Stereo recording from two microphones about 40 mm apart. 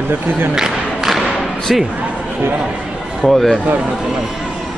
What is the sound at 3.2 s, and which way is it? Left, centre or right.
Speech, centre.